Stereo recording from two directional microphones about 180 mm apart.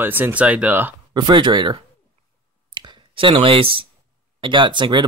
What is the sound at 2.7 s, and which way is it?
Clicking, 25° right (ahead or behind).